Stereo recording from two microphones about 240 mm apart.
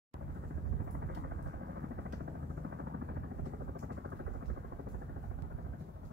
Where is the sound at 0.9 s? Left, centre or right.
Right.